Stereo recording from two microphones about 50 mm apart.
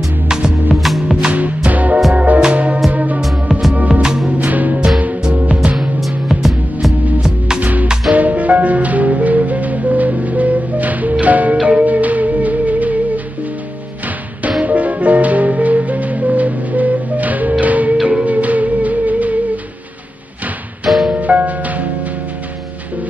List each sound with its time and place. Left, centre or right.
0.3 s music: centre
0.7 s music: centre
1.2 s music: right
3.2 s music: centre
4.4 s music: right
4.7 s music: centre
5.3 s music: right
5.8 s music: centre
7.2 s music: centre
7.6 s music: right
14.6 s music: right
21.1 s music: right